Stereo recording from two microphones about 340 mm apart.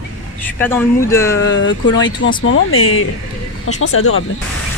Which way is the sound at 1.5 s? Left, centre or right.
Left.